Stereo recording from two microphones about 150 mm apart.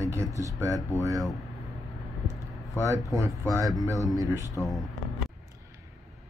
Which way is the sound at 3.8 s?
20° right (ahead or behind).